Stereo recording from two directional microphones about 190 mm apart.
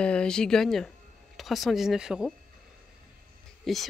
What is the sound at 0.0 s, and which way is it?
Speech, 5° left (ahead or behind).